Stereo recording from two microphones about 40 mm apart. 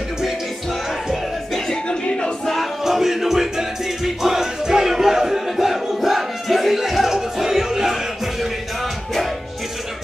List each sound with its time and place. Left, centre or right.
1.7 s music: left
2.4 s music: centre
2.8 s music: centre